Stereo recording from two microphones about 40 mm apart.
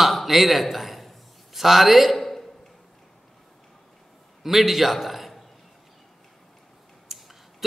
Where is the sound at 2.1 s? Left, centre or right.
Centre.